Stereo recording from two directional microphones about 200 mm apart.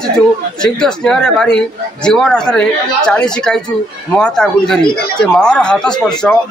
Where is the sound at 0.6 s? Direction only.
5° left (ahead or behind).